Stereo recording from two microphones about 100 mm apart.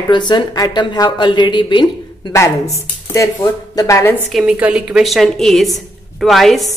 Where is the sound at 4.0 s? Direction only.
25° left (ahead or behind).